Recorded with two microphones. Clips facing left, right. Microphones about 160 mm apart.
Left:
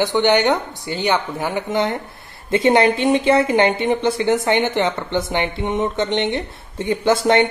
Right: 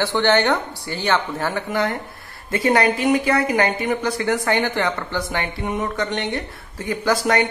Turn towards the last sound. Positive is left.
turn(degrees=25)  # may be behind; listen again after turning